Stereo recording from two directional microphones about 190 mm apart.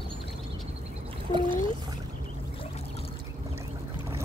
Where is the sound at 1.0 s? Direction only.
25° right (ahead or behind).